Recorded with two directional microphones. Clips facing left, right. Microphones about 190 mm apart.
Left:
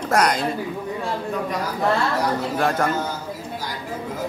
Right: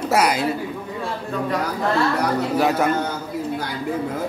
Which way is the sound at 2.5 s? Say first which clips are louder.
Right 4 dB; 5° right (ahead or behind).